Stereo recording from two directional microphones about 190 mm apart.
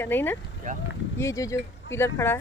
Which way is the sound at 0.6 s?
45° right (ahead or behind).